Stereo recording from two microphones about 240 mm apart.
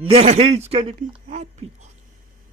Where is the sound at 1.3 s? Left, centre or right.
Right.